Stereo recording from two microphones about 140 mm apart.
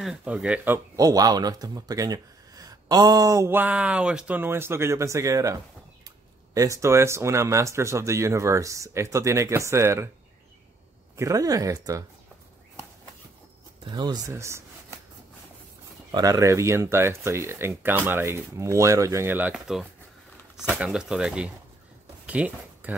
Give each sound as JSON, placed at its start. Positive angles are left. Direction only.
{"t": 0.0, "sound": "speech", "side_deg": -5}
{"t": 0.9, "sound": "speech", "side_deg": -25}
{"t": 11.1, "sound": "speech", "side_deg": -25}
{"t": 13.8, "sound": "speech", "side_deg": -30}
{"t": 16.1, "sound": "speech", "side_deg": -25}
{"t": 22.2, "sound": "a sound", "side_deg": -10}